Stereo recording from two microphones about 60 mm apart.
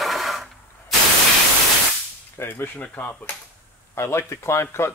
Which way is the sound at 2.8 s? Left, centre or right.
Left.